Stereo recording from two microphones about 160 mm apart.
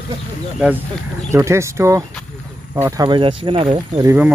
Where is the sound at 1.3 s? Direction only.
15° right (ahead or behind).